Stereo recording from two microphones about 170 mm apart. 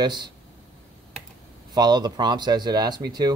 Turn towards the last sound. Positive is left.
turn(degrees=-25)  # may be behind; listen again after turning